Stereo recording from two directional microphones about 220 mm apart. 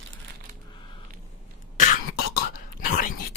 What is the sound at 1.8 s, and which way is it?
Throat clearing, 40° left (ahead or behind).